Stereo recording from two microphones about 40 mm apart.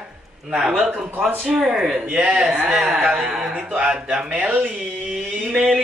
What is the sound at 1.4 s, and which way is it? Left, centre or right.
A man's voice, centre.